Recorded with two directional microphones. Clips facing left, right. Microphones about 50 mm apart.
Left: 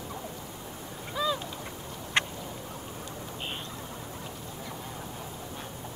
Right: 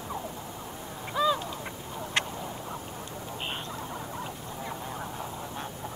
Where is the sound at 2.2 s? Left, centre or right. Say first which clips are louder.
Left 2 dB; left.